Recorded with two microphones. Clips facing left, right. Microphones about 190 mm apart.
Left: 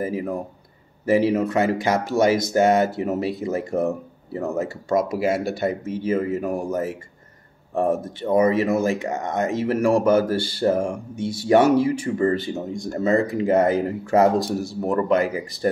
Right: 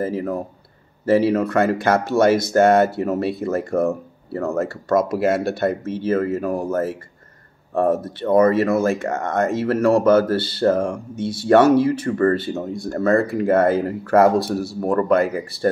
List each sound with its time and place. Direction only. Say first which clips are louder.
0.0 s speech: right 2 dB; 15° left (ahead or behind)
1.6 s speech: right 3 dB; 55° right (ahead or behind)
2.4 s speech: right 3 dB; 15° left (ahead or behind)